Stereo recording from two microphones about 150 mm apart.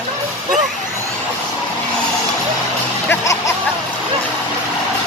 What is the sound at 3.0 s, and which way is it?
Music, 20° left (ahead or behind).